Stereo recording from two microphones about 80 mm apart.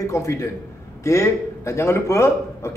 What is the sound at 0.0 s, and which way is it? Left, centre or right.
A man's voice, left.